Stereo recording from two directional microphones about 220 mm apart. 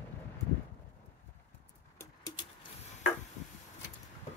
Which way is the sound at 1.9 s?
15° left (ahead or behind).